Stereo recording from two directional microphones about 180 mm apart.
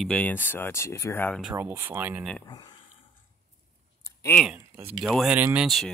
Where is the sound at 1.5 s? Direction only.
15° right (ahead or behind).